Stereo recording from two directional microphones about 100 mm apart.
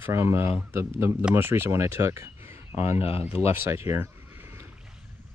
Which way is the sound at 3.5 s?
25° right (ahead or behind).